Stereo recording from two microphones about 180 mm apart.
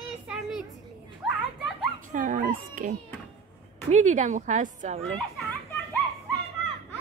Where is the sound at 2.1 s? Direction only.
45° right (ahead or behind).